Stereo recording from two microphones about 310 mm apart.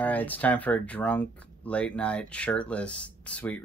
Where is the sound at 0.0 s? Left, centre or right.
Centre.